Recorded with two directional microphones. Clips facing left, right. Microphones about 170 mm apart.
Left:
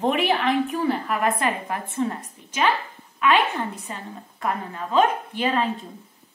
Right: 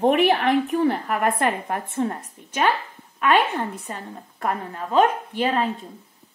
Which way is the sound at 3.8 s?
45° right (ahead or behind).